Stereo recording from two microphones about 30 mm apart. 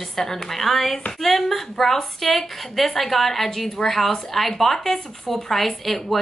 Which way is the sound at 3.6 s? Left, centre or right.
Centre.